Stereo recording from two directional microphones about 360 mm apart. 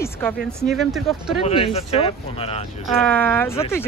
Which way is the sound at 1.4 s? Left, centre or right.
Centre.